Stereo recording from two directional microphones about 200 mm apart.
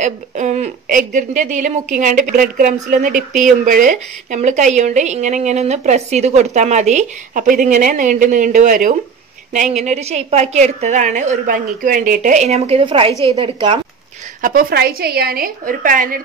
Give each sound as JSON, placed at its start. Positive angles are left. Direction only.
{"t": 0.0, "sound": "a woman's voice", "side_deg": -35}
{"t": 14.4, "sound": "a woman's voice", "side_deg": -45}